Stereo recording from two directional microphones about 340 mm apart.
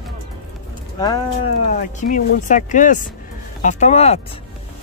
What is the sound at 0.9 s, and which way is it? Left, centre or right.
Speech, centre.